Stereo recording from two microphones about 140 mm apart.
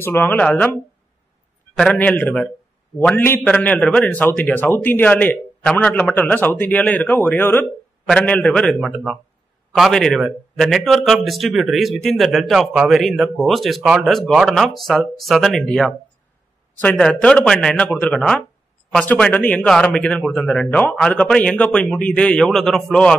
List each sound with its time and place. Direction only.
0.0 s speech: 15° left (ahead or behind)
1.8 s a man's voice: 5° left (ahead or behind)